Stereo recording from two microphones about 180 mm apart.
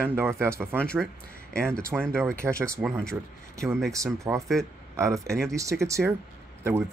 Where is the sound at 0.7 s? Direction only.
5° left (ahead or behind).